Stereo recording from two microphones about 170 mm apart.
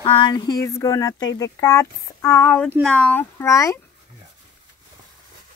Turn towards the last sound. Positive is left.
turn(degrees=20)  # may be behind; listen again after turning